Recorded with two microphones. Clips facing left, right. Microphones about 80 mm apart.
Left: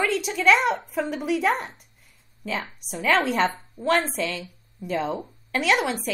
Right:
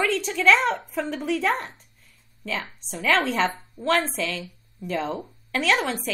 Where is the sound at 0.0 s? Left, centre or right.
Centre.